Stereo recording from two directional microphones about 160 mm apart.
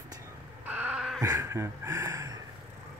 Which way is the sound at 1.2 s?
15° right (ahead or behind).